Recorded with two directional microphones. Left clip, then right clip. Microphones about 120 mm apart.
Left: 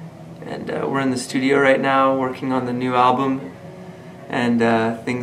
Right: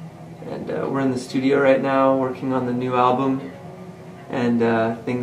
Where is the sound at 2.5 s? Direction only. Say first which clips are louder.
Left 2 dB; 50° left (ahead or behind).